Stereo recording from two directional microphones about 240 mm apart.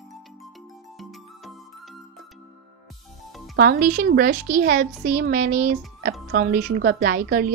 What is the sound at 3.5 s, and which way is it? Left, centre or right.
A woman's voice, right.